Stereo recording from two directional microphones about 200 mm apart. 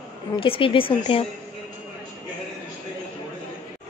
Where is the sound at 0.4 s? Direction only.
25° left (ahead or behind).